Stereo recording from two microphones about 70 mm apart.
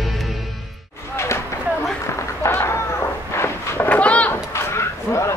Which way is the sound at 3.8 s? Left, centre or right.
Centre.